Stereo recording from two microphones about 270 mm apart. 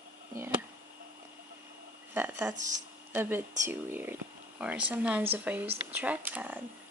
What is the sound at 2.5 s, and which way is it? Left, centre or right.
Speech, right.